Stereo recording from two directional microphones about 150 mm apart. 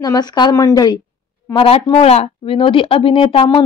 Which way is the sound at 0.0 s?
25° left (ahead or behind).